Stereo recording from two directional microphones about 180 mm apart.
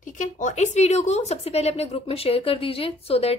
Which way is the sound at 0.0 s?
45° left (ahead or behind).